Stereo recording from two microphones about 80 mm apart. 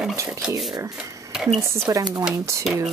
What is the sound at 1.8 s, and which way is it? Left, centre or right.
Speech, right.